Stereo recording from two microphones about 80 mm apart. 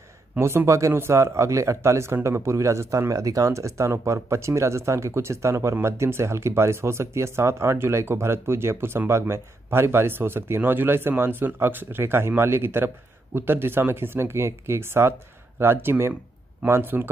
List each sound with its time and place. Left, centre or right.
0.4 s speech: right